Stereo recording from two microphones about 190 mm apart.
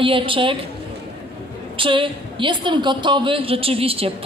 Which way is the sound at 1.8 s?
25° right (ahead or behind).